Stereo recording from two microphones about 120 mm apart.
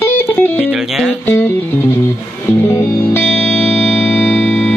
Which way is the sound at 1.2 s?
20° left (ahead or behind).